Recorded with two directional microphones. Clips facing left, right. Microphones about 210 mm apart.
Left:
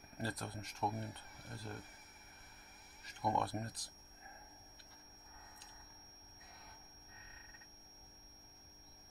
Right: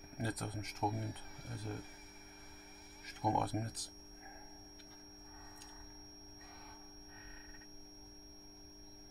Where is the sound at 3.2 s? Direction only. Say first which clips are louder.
Right 2 dB; 15° right (ahead or behind).